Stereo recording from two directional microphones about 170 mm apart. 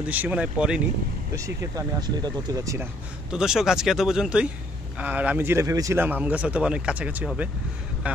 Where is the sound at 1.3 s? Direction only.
20° right (ahead or behind).